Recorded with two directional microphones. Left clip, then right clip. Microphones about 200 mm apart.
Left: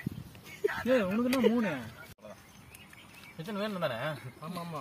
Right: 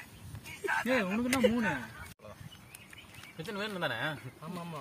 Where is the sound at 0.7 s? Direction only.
40° right (ahead or behind).